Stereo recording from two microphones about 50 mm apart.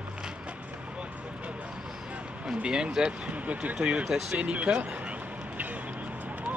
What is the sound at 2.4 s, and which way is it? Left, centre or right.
Speech, centre.